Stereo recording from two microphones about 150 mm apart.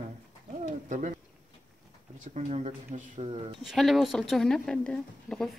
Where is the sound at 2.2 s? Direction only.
50° right (ahead or behind).